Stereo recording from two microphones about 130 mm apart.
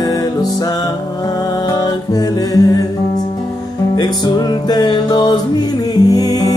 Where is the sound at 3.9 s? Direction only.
30° left (ahead or behind).